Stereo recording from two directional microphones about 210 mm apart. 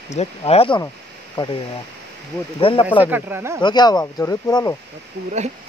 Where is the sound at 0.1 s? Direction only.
30° left (ahead or behind).